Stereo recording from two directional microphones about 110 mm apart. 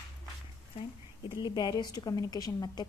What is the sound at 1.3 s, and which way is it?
A woman's voice, 40° left (ahead or behind).